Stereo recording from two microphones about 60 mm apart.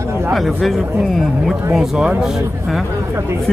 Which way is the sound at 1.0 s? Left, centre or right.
Centre.